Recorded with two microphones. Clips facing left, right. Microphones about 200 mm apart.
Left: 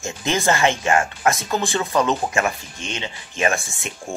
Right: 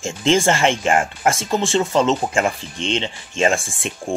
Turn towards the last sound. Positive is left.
turn(degrees=-25)  # may be behind; listen again after turning